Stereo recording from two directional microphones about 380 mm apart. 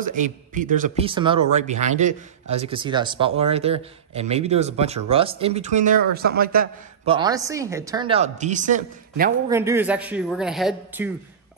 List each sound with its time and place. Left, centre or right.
0.0 s a man's voice: centre
7.2 s a man's voice: centre
9.5 s speech: centre